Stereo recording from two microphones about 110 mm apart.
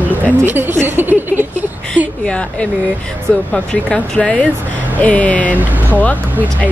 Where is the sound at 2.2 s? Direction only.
10° left (ahead or behind).